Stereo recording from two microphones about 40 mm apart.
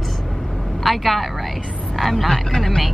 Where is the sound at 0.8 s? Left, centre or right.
Centre.